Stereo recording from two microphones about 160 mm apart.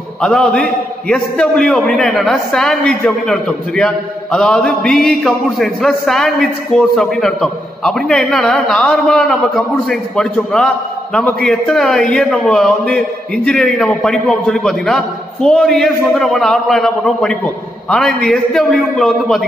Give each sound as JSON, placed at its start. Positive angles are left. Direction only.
{"t": 0.2, "sound": "a man's voice", "side_deg": 5}